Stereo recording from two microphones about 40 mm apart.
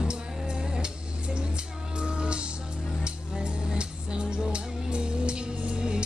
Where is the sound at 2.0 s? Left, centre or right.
Right.